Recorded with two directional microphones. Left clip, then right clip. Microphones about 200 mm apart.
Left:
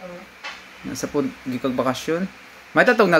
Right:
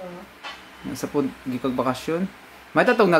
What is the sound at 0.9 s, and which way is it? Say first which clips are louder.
Speech: left 1 dB; 5° left (ahead or behind).